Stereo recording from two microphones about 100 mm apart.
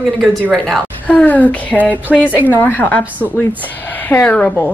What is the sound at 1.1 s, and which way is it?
Speech, 15° left (ahead or behind).